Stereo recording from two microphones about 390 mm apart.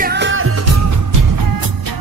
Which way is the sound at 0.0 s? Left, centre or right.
Right.